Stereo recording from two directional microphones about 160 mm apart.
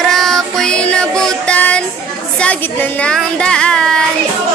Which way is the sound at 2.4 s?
10° left (ahead or behind).